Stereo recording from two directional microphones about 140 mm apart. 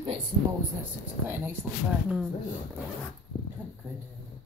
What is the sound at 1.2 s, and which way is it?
Speech, 15° right (ahead or behind).